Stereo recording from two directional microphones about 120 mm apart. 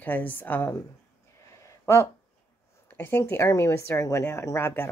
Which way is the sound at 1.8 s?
25° left (ahead or behind).